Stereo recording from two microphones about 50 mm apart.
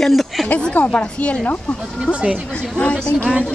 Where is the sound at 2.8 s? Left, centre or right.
Left.